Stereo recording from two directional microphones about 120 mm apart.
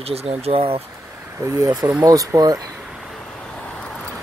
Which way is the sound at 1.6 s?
30° right (ahead or behind).